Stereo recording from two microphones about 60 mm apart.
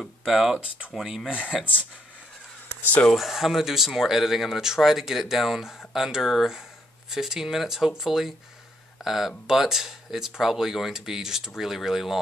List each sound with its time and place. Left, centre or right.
0.0 s a sound: centre
0.9 s speech: centre
2.8 s speech: left
3.1 s speech: centre